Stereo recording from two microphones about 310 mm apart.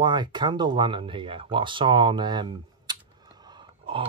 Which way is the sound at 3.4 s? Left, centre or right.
Centre.